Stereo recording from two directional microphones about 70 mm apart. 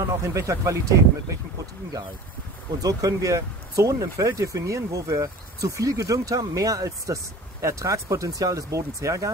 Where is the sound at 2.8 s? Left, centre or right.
Right.